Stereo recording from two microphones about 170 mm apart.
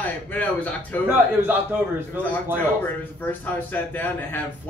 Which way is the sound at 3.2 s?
10° left (ahead or behind).